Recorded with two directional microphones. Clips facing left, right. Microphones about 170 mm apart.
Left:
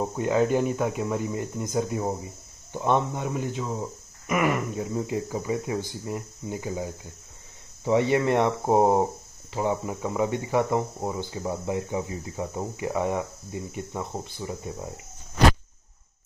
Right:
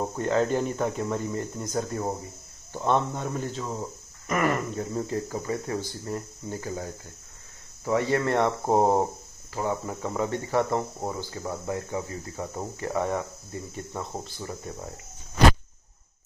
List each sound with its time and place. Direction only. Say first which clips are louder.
0.2 s speech: left 2 dB; 10° left (ahead or behind)